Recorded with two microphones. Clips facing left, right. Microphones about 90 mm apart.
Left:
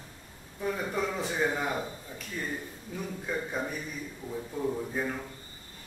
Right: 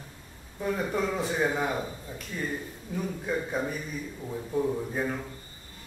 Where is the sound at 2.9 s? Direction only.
5° right (ahead or behind).